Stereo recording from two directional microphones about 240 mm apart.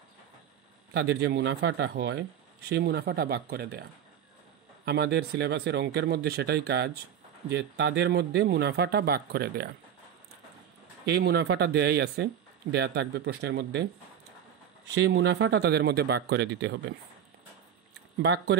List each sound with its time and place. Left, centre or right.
0.9 s speech: right
4.8 s speech: right
11.1 s speech: right
15.0 s speech: right
18.2 s speech: right